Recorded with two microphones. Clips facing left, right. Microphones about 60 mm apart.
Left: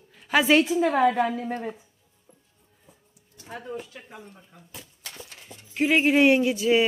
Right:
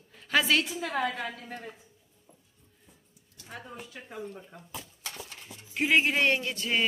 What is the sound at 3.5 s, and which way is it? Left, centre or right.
Speech, centre.